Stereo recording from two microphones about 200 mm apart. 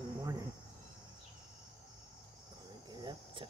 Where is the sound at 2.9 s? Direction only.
25° right (ahead or behind).